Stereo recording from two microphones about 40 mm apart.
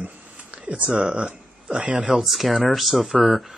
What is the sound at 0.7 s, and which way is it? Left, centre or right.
Speech, right.